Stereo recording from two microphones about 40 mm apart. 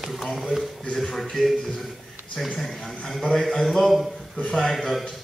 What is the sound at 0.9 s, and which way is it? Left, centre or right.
Speech, centre.